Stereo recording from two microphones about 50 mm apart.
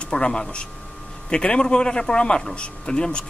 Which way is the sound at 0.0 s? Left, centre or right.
Centre.